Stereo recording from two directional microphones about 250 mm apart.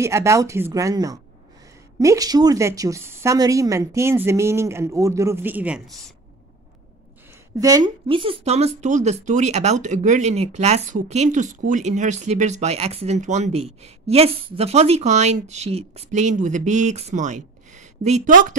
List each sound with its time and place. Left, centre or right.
0.0 s a woman's voice: centre
7.6 s speech: centre; by 18.6 s right